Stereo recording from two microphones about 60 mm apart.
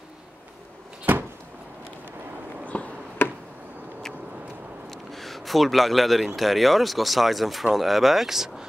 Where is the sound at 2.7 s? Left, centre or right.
Left.